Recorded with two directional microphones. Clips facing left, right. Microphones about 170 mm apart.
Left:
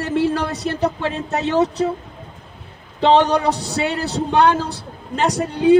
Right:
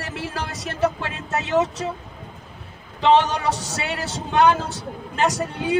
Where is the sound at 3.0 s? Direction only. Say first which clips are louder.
Left 3 dB; 35° left (ahead or behind).